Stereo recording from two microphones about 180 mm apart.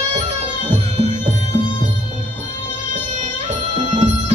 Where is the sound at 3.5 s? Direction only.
40° right (ahead or behind).